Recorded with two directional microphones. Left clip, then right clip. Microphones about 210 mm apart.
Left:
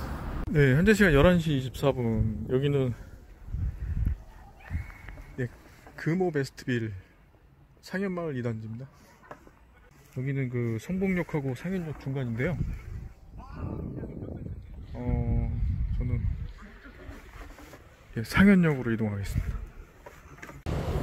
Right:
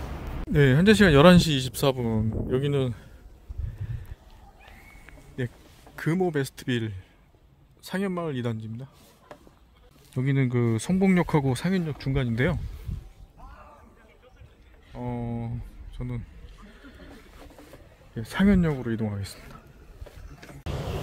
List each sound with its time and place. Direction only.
0.5 s speech: 20° right (ahead or behind)
1.3 s speech: 40° right (ahead or behind)
2.0 s speech: 25° right (ahead or behind)
5.4 s a man's voice: 10° right (ahead or behind)
10.1 s speech: 35° right (ahead or behind)
15.0 s a sound: 15° right (ahead or behind)
18.1 s speech: centre (ahead or behind)